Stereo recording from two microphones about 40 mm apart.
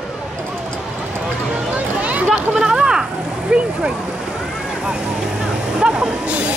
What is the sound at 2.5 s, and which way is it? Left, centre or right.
Speech, centre.